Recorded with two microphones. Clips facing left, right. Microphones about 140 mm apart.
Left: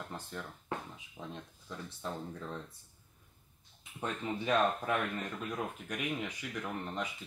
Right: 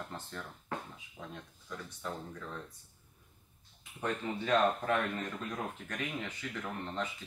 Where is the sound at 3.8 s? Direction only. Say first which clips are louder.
Right 2 dB; 15° left (ahead or behind).